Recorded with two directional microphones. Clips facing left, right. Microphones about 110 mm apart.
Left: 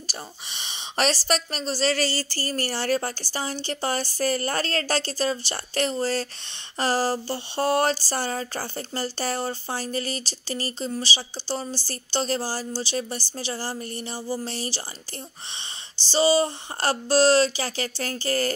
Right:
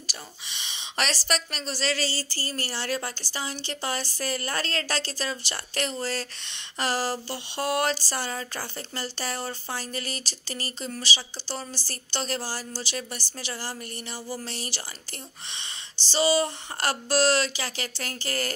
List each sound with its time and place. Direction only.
0.0 s speech: 40° left (ahead or behind)
2.0 s a sound: 60° left (ahead or behind)
2.5 s speech: 45° left (ahead or behind)
16.1 s speech: 30° left (ahead or behind)